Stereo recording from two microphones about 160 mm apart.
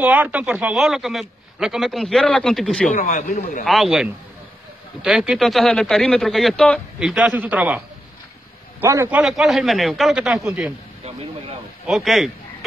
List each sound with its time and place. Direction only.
0.0 s a man's voice: 10° right (ahead or behind)
2.9 s a man's voice: 60° left (ahead or behind)
3.6 s a man's voice: centre (ahead or behind)
7.0 s a man's voice: 5° right (ahead or behind)
8.8 s a man's voice: 15° right (ahead or behind)
9.2 s a man's voice: centre (ahead or behind)
11.1 s speech: 40° right (ahead or behind)
11.8 s a man's voice: centre (ahead or behind)